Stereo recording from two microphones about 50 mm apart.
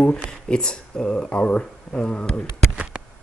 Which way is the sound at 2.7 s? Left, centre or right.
Right.